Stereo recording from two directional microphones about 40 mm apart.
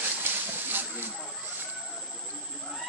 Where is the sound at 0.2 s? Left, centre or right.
Right.